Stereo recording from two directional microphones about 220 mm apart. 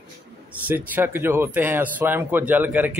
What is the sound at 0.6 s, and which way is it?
Speech, 10° right (ahead or behind).